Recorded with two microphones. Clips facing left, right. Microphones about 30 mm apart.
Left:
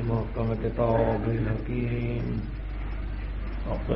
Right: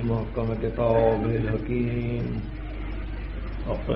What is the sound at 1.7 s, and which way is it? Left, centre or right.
Mantra, right.